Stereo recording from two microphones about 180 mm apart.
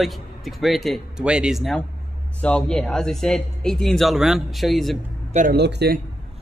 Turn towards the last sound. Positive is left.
turn(degrees=-65)  # may be behind; listen again after turning